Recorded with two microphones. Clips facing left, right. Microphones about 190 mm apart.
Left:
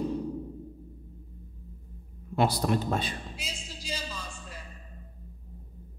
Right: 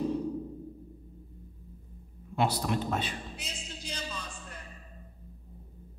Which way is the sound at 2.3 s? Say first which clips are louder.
Left 3 dB; 40° left (ahead or behind).